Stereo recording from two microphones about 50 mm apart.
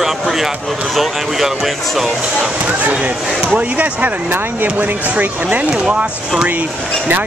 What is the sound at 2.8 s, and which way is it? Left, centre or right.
Speech, right.